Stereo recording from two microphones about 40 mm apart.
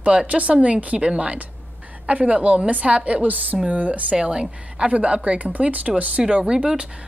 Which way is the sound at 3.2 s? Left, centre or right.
Right.